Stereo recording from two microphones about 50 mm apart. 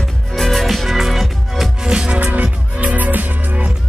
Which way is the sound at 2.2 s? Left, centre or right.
Right.